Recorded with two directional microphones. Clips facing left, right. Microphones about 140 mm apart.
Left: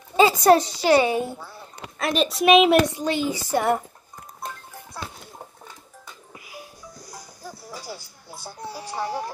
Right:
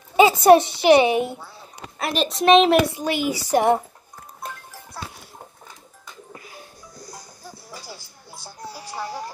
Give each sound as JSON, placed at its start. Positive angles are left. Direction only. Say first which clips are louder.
{"t": 0.1, "sound": "a child's voice", "louder": "right 3 dB", "side_deg": -20}
{"t": 2.0, "sound": "a woman's voice", "louder": "left 1 dB", "side_deg": 0}
{"t": 2.9, "sound": "a woman's voice", "louder": "right 1 dB", "side_deg": -15}
{"t": 6.3, "sound": "music", "louder": "left 2 dB", "side_deg": 10}
{"t": 8.9, "sound": "music", "louder": "left 3 dB", "side_deg": 15}